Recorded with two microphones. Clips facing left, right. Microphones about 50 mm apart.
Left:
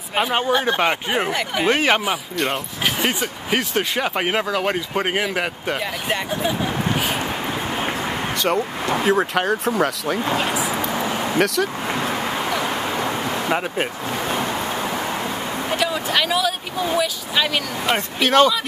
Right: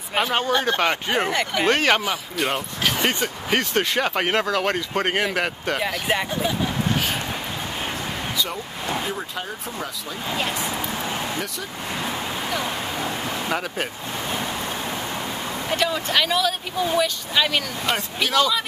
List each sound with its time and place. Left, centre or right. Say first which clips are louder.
0.1 s speech: left 2 dB; centre
8.4 s speech: left 7 dB; left
11.3 s speech: left 11 dB; left
13.5 s speech: left 4 dB; left
15.7 s speech: even; centre
17.9 s speech: left 6 dB; left